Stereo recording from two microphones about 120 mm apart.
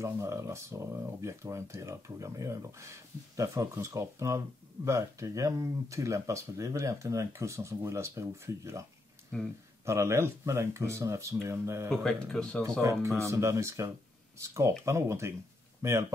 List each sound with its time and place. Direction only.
0.0 s speech: 25° right (ahead or behind)
9.8 s speech: 25° right (ahead or behind)
11.9 s speech: 5° left (ahead or behind)
13.2 s speech: 25° right (ahead or behind)